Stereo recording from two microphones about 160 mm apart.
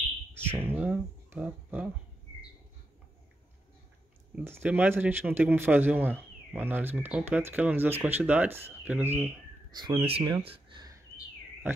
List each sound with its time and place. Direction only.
0.4 s speech: 15° right (ahead or behind)
4.4 s speech: 10° right (ahead or behind)
9.8 s speech: 30° right (ahead or behind)